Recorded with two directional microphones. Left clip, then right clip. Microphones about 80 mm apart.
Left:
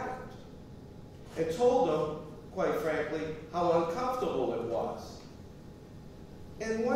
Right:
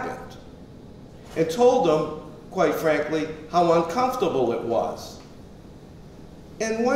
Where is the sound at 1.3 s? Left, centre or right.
Right.